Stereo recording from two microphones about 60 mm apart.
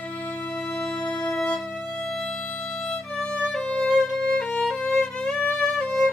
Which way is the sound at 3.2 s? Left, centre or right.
Centre.